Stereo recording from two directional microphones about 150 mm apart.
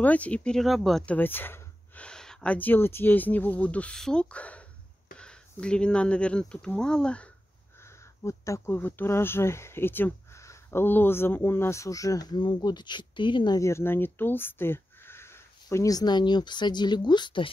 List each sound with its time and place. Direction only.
0.0 s speech: 10° left (ahead or behind)
7.8 s speech: 20° left (ahead or behind)